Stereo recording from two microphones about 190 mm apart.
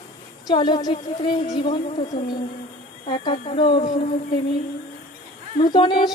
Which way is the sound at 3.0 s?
25° left (ahead or behind).